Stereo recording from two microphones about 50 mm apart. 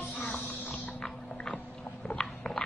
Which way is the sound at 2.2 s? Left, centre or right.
Centre.